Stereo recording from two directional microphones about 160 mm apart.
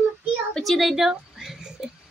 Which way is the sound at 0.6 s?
Centre (ahead or behind).